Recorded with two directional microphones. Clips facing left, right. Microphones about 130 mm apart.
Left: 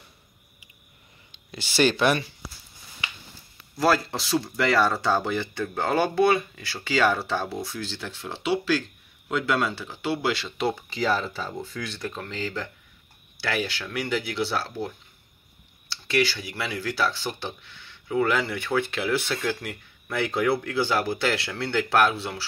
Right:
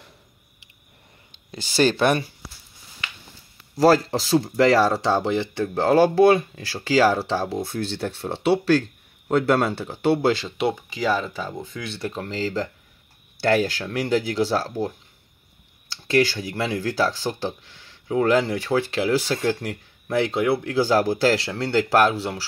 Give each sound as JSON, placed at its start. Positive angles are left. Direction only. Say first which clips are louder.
{"t": 1.5, "sound": "speech", "louder": "right 2 dB", "side_deg": -40}
{"t": 3.7, "sound": "speech", "louder": "right 6 dB", "side_deg": -40}
{"t": 7.6, "sound": "speech", "louder": "right 7 dB", "side_deg": -55}
{"t": 9.3, "sound": "speech", "louder": "right 6 dB", "side_deg": -40}
{"t": 10.7, "sound": "speech", "louder": "right 1 dB", "side_deg": -10}
{"t": 15.9, "sound": "clicking", "louder": "right 4 dB", "side_deg": -40}
{"t": 16.5, "sound": "speech", "louder": "right 6 dB", "side_deg": -40}